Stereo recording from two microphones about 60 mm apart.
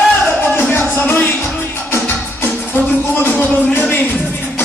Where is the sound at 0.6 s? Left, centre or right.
Left.